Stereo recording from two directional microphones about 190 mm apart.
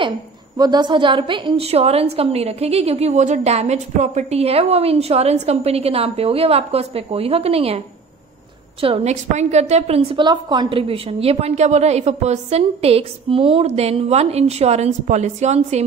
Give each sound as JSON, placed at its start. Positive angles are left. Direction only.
{"t": 0.6, "sound": "a woman's voice", "side_deg": -20}
{"t": 8.8, "sound": "a woman's voice", "side_deg": -35}